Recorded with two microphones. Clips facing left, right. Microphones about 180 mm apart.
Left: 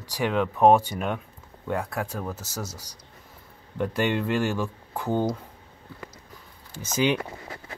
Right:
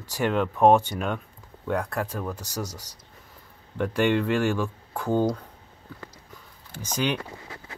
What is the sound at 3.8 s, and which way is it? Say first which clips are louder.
Speech: right 2 dB; 5° left (ahead or behind).